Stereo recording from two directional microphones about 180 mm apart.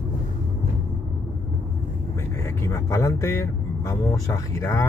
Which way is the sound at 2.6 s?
15° left (ahead or behind).